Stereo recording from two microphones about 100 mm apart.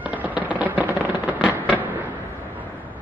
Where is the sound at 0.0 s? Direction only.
15° right (ahead or behind).